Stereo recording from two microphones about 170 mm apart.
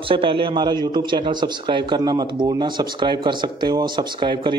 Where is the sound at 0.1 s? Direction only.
30° right (ahead or behind).